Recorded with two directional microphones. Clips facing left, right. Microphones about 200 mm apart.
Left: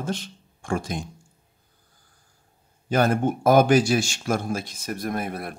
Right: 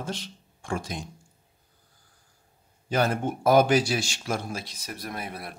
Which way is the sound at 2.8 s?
50° left (ahead or behind).